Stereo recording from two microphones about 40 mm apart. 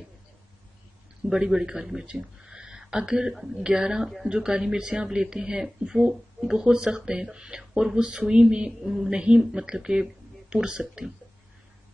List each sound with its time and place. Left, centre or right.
1.2 s speech: centre
2.0 s a sound: right
2.8 s speech: centre
8.8 s speech: centre
9.1 s speech: right